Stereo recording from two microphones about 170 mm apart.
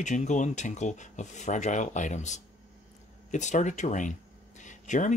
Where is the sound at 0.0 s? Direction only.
45° left (ahead or behind).